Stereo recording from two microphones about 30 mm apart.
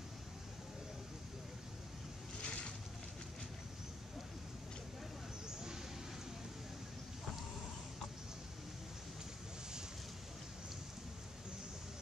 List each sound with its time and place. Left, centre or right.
2.4 s boat: left